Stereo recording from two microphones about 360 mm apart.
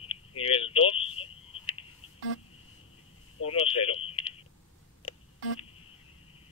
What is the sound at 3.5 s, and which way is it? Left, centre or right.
Speech, centre.